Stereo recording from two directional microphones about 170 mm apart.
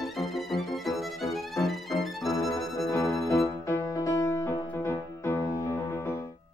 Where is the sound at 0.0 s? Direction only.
Centre (ahead or behind).